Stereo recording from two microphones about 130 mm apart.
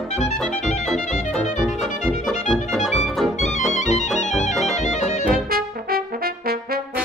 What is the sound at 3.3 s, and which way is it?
Music, 65° left (ahead or behind).